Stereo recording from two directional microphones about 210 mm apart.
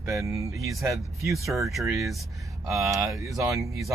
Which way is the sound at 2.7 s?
15° right (ahead or behind).